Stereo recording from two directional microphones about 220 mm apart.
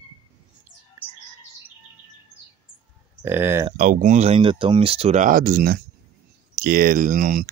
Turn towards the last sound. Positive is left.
turn(degrees=-35)  # may be behind; listen again after turning